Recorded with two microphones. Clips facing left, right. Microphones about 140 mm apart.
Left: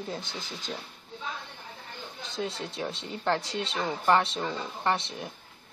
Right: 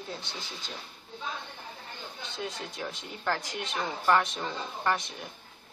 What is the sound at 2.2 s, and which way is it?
Speech, 30° left (ahead or behind).